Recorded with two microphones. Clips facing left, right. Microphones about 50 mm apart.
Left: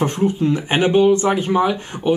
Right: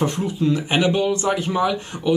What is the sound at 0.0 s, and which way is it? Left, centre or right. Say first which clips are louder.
Speech: left 3 dB; left.